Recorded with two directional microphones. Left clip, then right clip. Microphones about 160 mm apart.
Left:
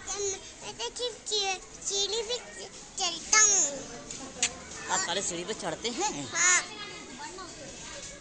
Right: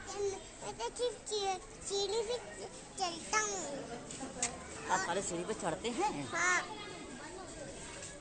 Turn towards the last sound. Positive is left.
turn(degrees=-25)  # may be behind; listen again after turning